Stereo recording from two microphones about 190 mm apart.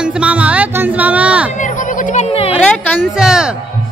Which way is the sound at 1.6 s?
40° left (ahead or behind).